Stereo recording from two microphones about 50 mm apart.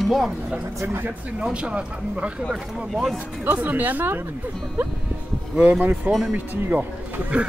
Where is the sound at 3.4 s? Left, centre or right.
Right.